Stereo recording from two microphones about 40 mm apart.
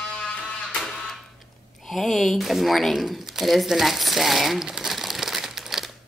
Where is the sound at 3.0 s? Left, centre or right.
Centre.